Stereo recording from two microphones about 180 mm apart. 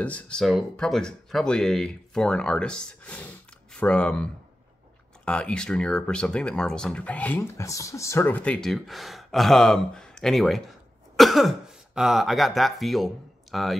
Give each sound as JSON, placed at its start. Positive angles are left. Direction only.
{"t": 0.0, "sound": "speech", "side_deg": 10}